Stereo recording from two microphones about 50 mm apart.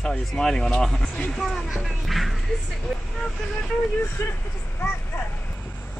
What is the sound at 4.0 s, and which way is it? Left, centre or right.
Speech, left.